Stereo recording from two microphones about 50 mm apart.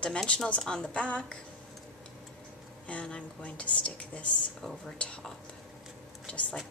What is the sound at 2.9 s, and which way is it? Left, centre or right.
Speech, left.